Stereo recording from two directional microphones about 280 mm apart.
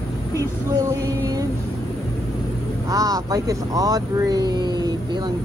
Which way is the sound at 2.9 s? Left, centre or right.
Centre.